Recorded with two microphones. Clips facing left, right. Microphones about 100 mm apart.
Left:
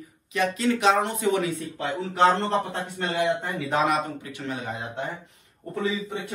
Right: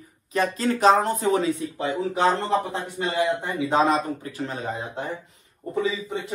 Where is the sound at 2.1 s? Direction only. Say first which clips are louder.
Left 2 dB; 10° right (ahead or behind).